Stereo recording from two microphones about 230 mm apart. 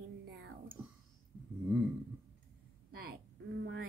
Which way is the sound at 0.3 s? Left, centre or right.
Right.